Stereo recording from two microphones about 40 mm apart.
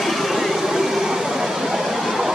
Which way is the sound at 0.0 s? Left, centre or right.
Centre.